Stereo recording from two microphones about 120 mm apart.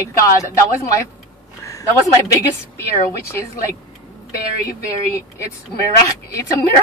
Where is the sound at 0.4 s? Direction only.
25° left (ahead or behind).